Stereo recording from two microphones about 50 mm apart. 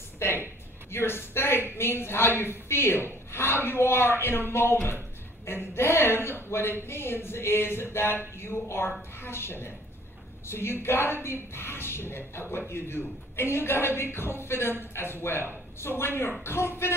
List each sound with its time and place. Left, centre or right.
0.2 s music: left
0.9 s speech: left
8.4 s music: left
9.2 s speech: left
14.1 s music: left
15.0 s speech: left
16.4 s music: left